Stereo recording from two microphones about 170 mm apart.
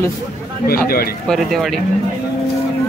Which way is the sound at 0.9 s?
60° left (ahead or behind).